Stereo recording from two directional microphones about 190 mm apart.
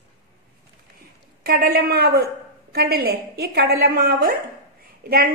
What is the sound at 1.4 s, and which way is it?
A woman's voice, 50° right (ahead or behind).